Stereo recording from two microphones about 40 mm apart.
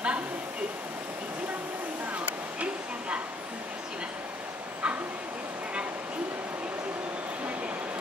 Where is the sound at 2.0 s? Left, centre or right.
Right.